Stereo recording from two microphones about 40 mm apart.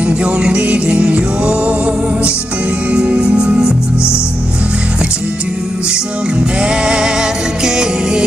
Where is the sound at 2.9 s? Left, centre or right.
Right.